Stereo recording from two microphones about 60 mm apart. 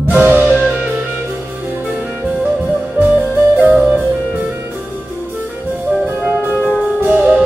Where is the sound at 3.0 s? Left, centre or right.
Right.